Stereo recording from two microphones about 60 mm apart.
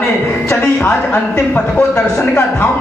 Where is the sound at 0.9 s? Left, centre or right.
Left.